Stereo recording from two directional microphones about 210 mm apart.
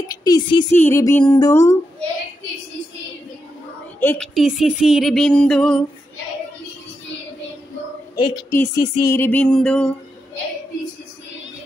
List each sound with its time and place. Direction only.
0.2 s a woman's voice: 20° left (ahead or behind)
4.0 s a woman's voice: 10° left (ahead or behind)
4.4 s female singing: centre (ahead or behind)
8.4 s a woman's voice: 15° left (ahead or behind)